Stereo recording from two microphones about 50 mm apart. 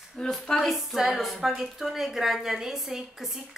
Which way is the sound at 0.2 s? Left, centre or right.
Centre.